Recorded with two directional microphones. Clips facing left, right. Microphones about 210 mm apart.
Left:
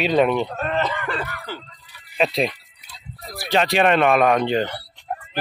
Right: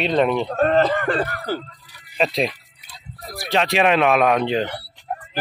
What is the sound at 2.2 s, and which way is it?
A man's voice, centre (ahead or behind).